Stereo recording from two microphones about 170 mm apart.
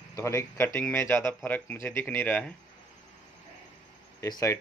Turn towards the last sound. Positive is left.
turn(degrees=20)  # may be behind; listen again after turning